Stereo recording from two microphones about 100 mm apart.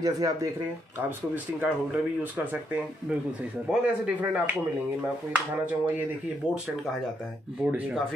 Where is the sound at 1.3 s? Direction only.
15° right (ahead or behind).